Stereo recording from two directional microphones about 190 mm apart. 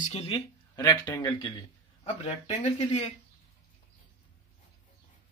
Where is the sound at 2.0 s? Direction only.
30° left (ahead or behind).